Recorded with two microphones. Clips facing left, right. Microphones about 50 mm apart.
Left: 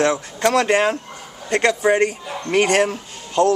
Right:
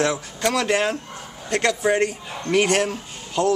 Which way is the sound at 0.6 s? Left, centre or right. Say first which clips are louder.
Left 4 dB; left.